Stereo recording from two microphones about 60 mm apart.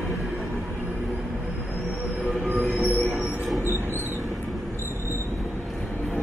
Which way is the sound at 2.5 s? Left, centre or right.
Right.